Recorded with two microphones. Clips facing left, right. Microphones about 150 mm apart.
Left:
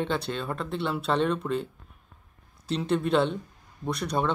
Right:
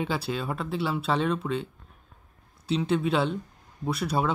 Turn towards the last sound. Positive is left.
turn(degrees=-5)  # may be behind; listen again after turning